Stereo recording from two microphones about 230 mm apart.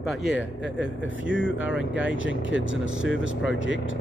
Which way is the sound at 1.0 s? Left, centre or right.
Left.